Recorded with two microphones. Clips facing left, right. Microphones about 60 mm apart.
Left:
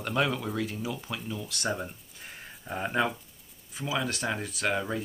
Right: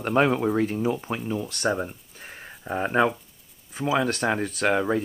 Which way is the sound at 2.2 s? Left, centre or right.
Right.